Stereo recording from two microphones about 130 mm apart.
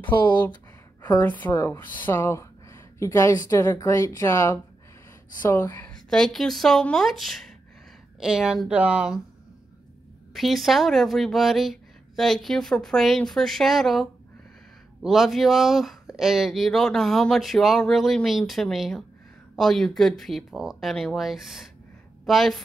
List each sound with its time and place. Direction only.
1.2 s speech: 15° left (ahead or behind)
5.9 s speech: 5° left (ahead or behind)
10.3 s a woman's voice: centre (ahead or behind)